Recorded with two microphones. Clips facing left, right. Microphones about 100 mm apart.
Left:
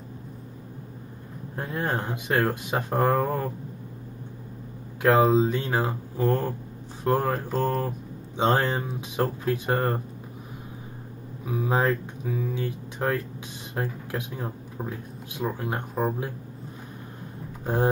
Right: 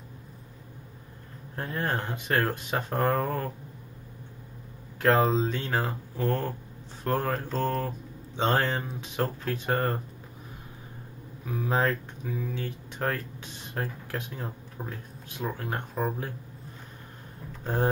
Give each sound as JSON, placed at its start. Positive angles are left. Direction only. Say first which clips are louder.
{"t": 1.8, "sound": "speech", "louder": "left 2 dB", "side_deg": 10}
{"t": 5.3, "sound": "speech", "louder": "left 5 dB", "side_deg": 15}
{"t": 11.4, "sound": "speech", "louder": "left 3 dB", "side_deg": 15}
{"t": 17.5, "sound": "a sound", "louder": "left 3 dB", "side_deg": 15}